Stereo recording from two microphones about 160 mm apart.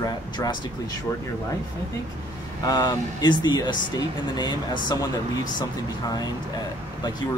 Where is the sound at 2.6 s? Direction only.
25° left (ahead or behind).